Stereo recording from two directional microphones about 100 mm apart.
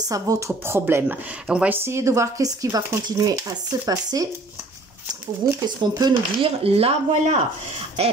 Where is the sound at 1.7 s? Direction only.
25° right (ahead or behind).